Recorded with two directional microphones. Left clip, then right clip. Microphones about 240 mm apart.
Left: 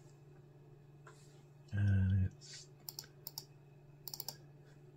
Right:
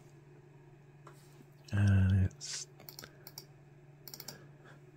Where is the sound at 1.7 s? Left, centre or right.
Right.